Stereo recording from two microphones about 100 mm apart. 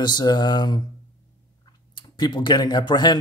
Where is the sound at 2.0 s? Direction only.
50° left (ahead or behind).